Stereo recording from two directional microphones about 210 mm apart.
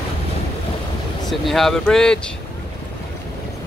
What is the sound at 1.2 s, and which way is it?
Speech, centre (ahead or behind).